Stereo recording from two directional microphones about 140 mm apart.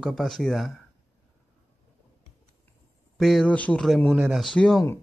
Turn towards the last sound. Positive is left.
turn(degrees=5)  # may be behind; listen again after turning